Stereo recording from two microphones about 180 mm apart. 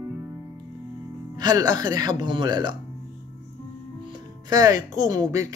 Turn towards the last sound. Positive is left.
turn(degrees=-20)  # may be behind; listen again after turning